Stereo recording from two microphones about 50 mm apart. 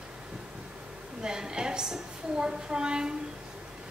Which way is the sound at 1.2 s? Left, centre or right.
Centre.